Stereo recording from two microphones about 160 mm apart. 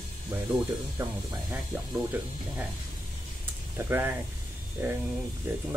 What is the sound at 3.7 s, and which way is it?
Speech, 15° right (ahead or behind).